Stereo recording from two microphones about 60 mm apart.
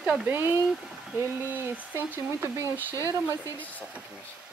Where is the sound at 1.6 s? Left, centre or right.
Right.